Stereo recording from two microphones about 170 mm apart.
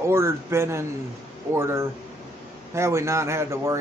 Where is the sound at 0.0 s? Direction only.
15° right (ahead or behind).